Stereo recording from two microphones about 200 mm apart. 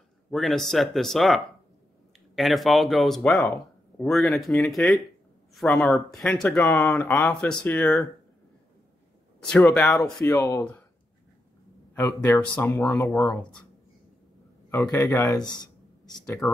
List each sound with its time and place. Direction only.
0.3 s speech: centre (ahead or behind)
9.4 s speech: 5° left (ahead or behind)
11.9 s speech: 10° left (ahead or behind)
13.1 s speech: centre (ahead or behind)
14.7 s speech: 10° left (ahead or behind)
15.6 s a sound: 20° left (ahead or behind)